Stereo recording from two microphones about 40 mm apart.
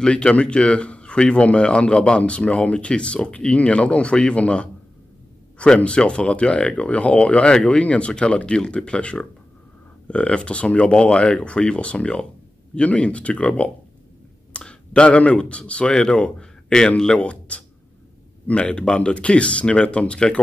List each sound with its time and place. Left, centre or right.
0.0 s speech: left
5.9 s speech: left
15.9 s speech: centre
17.2 s speech: left